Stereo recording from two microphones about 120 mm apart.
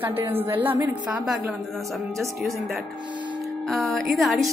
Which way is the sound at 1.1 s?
5° right (ahead or behind).